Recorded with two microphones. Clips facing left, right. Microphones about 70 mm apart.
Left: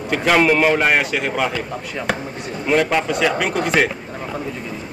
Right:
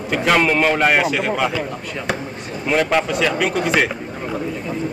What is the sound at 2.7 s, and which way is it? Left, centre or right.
Speech, centre.